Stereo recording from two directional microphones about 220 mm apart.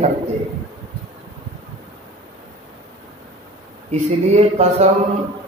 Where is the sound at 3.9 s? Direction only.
30° right (ahead or behind).